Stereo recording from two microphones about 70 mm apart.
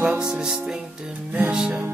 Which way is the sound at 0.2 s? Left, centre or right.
Centre.